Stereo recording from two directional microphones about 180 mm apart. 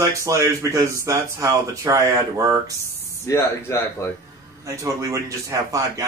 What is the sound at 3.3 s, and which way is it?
Speech, 15° left (ahead or behind).